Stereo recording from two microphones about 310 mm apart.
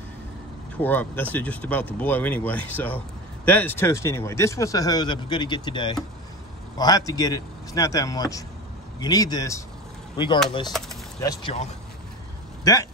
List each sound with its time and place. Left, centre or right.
0.7 s speech: centre